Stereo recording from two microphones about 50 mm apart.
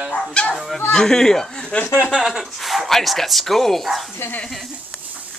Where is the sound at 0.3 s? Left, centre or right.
Left.